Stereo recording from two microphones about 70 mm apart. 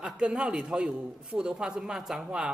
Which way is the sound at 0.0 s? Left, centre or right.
Centre.